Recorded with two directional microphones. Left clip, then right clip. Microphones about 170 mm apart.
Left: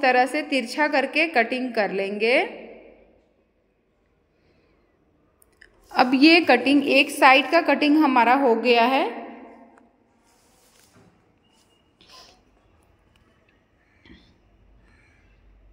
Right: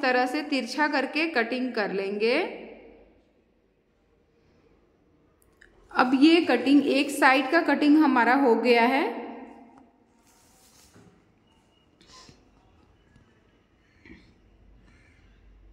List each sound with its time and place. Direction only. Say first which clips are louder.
0.0 s a woman's voice: left 5 dB; 15° left (ahead or behind)
5.6 s chewing: left 4 dB; 15° left (ahead or behind)
6.2 s a woman's voice: left 6 dB; 25° left (ahead or behind)
6.8 s a woman's voice: left 5 dB; 5° left (ahead or behind)
12.0 s music: left 3 dB; centre (ahead or behind)